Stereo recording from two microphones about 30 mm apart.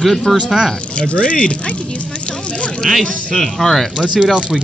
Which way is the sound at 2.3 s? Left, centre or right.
Left.